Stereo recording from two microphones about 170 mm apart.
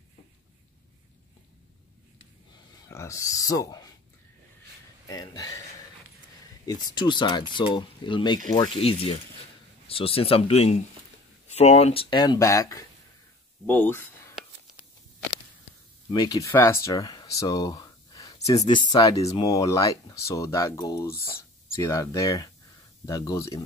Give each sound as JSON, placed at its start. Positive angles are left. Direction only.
{"t": 2.9, "sound": "speech", "side_deg": 15}
{"t": 5.0, "sound": "speech", "side_deg": 20}
{"t": 6.6, "sound": "speech", "side_deg": 25}
{"t": 16.1, "sound": "speech", "side_deg": 20}